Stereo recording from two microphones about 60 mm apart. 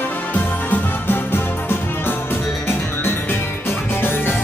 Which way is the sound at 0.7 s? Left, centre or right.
Left.